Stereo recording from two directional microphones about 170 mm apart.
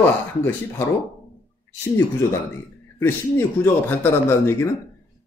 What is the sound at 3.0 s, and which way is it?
Speech, 15° left (ahead or behind).